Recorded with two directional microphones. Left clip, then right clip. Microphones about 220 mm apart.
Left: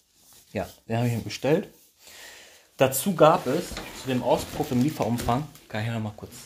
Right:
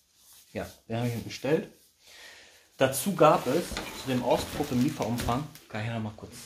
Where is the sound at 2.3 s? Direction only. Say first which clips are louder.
Left 5 dB; 45° left (ahead or behind).